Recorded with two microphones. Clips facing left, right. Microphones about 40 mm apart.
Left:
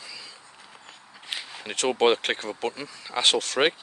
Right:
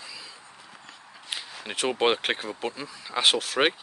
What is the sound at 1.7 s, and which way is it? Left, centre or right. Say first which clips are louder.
Speech: left 3 dB; centre.